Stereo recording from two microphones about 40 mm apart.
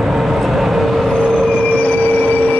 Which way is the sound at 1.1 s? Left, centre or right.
Left.